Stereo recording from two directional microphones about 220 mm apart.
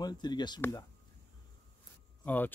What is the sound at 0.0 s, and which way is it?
Speech, 20° left (ahead or behind).